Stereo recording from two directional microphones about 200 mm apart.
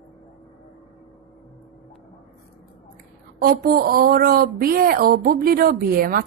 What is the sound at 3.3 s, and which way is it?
A woman's voice, 50° right (ahead or behind).